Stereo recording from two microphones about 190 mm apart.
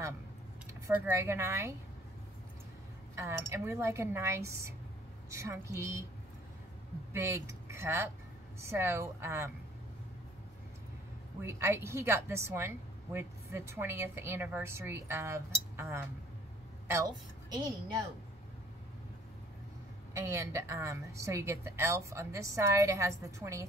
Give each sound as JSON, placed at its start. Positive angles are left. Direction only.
{"t": 0.7, "sound": "speech", "side_deg": -15}
{"t": 3.2, "sound": "a woman's voice", "side_deg": -15}
{"t": 7.1, "sound": "a woman's voice", "side_deg": -15}
{"t": 11.4, "sound": "a woman's voice", "side_deg": -15}
{"t": 20.2, "sound": "a woman's voice", "side_deg": -15}